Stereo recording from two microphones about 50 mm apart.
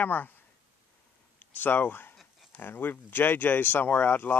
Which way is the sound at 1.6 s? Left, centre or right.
Left.